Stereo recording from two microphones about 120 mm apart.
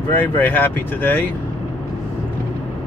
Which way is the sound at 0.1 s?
15° left (ahead or behind).